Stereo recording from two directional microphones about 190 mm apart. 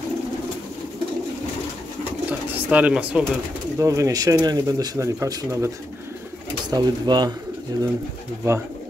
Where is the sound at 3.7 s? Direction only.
15° right (ahead or behind).